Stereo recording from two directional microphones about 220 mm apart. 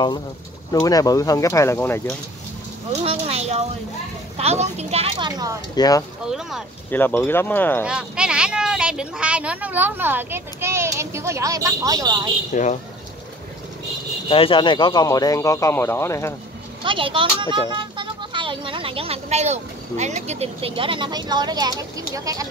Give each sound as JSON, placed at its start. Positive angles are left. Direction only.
{"t": 0.7, "sound": "speech", "side_deg": 15}
{"t": 2.9, "sound": "a sound", "side_deg": -30}
{"t": 4.4, "sound": "a woman's voice", "side_deg": -30}
{"t": 5.8, "sound": "speech", "side_deg": 15}
{"t": 6.2, "sound": "speech", "side_deg": 0}
{"t": 7.8, "sound": "speech", "side_deg": -5}
{"t": 12.5, "sound": "speech", "side_deg": 35}
{"t": 14.3, "sound": "speech", "side_deg": 25}
{"t": 16.8, "sound": "speech", "side_deg": -25}